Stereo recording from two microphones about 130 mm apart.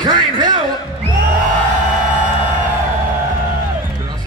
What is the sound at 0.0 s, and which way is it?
Music, 35° right (ahead or behind).